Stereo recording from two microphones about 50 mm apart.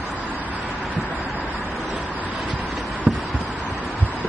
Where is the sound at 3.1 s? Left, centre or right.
Right.